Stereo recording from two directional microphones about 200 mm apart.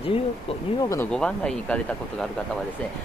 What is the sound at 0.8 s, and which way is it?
Speech, 15° left (ahead or behind).